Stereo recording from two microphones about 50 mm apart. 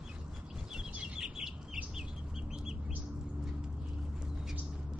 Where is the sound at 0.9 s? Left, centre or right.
Centre.